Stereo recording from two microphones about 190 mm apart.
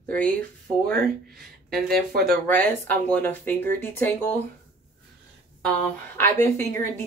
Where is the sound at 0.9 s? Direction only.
50° right (ahead or behind).